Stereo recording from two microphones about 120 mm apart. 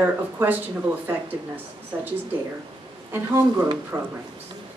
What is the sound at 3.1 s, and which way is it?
Speech, 25° right (ahead or behind).